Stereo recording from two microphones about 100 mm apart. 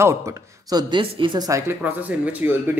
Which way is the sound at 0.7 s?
45° right (ahead or behind).